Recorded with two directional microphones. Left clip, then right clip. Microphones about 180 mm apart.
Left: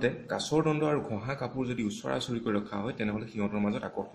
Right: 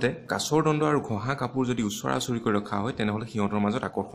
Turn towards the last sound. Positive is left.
turn(degrees=-50)  # may be behind; listen again after turning